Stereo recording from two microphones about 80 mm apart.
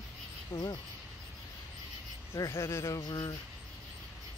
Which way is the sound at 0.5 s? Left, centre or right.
Left.